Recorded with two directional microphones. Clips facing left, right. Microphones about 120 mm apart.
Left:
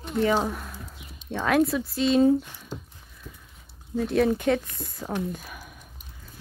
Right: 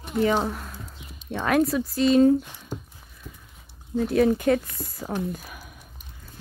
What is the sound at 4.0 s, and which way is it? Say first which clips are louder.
Speech: right 2 dB; centre (ahead or behind).